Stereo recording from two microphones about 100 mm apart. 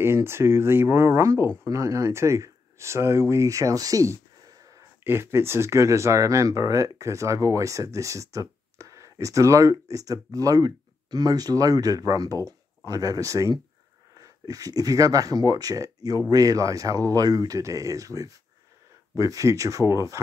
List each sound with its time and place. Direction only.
0.0 s speech: 25° right (ahead or behind)
5.0 s speech: 25° right (ahead or behind)